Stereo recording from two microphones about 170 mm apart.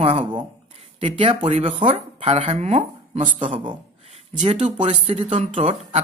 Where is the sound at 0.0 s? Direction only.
35° right (ahead or behind).